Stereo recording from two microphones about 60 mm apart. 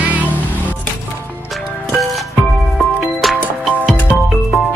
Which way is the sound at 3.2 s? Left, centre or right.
Centre.